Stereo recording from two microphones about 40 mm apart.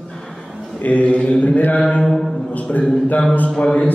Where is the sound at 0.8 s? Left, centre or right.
Left.